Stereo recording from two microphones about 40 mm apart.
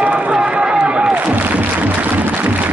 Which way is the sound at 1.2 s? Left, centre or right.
Right.